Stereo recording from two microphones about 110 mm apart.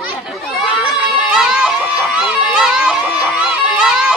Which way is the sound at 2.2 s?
5° right (ahead or behind).